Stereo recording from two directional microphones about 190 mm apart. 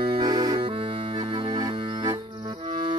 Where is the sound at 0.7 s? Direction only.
25° right (ahead or behind).